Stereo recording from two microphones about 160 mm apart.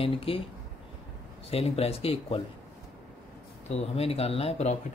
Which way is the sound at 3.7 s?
40° left (ahead or behind).